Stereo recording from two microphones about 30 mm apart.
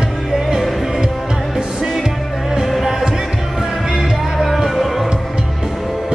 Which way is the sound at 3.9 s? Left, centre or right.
Centre.